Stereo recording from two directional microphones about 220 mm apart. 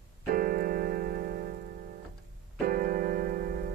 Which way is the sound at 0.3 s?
40° right (ahead or behind).